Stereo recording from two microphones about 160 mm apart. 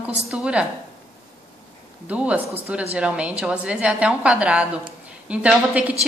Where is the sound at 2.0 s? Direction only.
10° right (ahead or behind).